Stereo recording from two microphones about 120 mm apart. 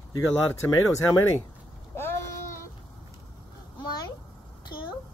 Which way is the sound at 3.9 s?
35° left (ahead or behind).